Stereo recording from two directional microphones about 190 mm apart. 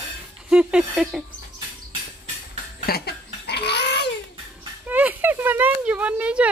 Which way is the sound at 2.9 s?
60° left (ahead or behind).